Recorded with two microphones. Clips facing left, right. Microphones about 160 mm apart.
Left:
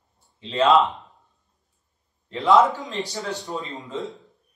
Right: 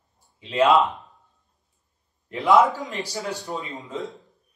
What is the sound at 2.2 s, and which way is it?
Speech, centre (ahead or behind).